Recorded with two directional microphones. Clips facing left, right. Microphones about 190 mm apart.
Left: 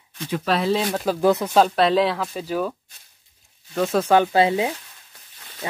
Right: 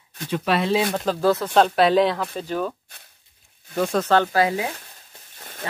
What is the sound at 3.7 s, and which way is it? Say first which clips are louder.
Speech: left 2 dB; 5° left (ahead or behind).